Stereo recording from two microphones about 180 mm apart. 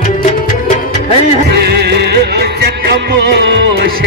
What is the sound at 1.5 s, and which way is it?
Music, 65° right (ahead or behind).